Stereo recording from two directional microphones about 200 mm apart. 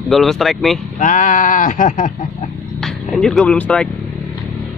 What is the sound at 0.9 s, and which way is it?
Speech, 40° left (ahead or behind).